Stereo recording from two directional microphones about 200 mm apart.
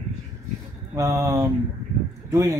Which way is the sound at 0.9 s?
15° right (ahead or behind).